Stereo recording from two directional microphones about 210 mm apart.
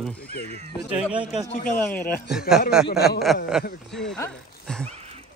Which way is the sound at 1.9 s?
10° left (ahead or behind).